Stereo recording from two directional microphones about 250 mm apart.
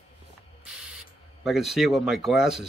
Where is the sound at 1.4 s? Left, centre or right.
Centre.